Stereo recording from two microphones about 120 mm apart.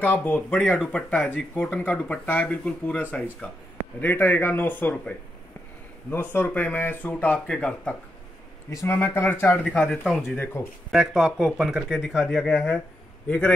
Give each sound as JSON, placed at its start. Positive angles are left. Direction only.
{"t": 0.0, "sound": "speech", "side_deg": 15}
{"t": 8.6, "sound": "speech", "side_deg": 20}
{"t": 9.7, "sound": "speech", "side_deg": 5}
{"t": 10.6, "sound": "speech", "side_deg": 20}
{"t": 10.9, "sound": "speech", "side_deg": -5}